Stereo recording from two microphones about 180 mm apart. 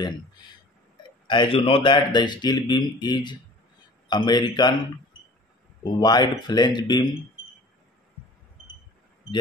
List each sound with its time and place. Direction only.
1.2 s speech: 25° left (ahead or behind)
5.9 s speech: 25° left (ahead or behind)